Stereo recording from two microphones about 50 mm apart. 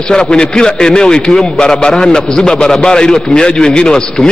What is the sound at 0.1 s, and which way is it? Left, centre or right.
A man's voice, centre.